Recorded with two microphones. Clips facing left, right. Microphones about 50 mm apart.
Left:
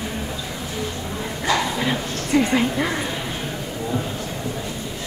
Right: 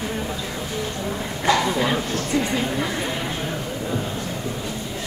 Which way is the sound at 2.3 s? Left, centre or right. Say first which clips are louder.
Left 5 dB; left.